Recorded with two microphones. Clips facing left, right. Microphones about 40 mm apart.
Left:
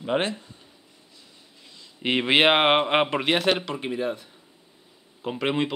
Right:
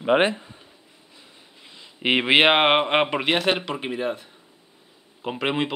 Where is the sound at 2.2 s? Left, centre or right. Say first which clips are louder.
Right 1 dB; centre.